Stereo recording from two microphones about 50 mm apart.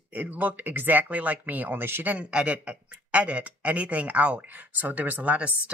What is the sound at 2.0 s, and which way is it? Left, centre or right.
Speech, right.